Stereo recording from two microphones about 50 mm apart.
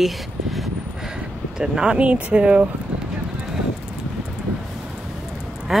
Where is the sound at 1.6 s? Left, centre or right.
Centre.